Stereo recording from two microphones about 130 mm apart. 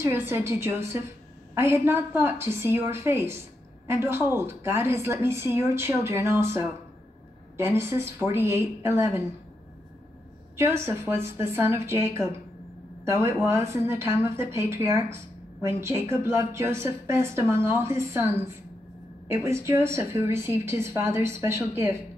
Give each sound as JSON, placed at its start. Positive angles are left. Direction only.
{"t": 0.0, "sound": "a woman's voice", "side_deg": -20}
{"t": 10.6, "sound": "a woman's voice", "side_deg": -20}